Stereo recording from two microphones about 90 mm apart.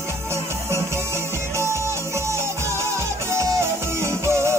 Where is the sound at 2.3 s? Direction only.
30° right (ahead or behind).